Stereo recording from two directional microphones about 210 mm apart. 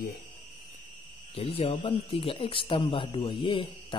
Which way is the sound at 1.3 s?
30° left (ahead or behind).